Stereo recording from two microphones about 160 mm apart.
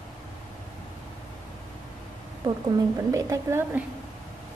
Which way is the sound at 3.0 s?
20° right (ahead or behind).